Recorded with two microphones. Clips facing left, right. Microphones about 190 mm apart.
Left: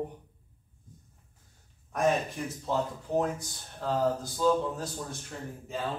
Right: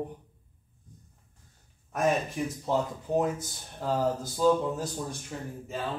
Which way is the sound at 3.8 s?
5° right (ahead or behind).